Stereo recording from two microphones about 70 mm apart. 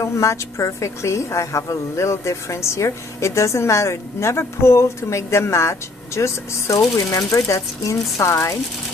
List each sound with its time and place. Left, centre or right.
0.0 s a woman's voice: left